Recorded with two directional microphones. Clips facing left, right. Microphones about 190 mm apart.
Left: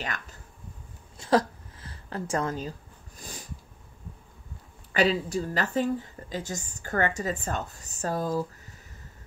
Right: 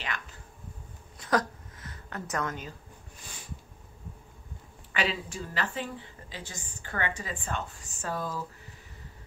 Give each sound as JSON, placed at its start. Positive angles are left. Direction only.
{"t": 0.0, "sound": "speech", "side_deg": 45}
{"t": 1.1, "sound": "a sound", "side_deg": 25}
{"t": 4.9, "sound": "a woman's voice", "side_deg": 40}